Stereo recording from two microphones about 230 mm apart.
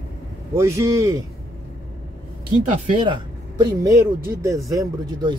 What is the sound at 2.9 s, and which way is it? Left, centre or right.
Speech, right.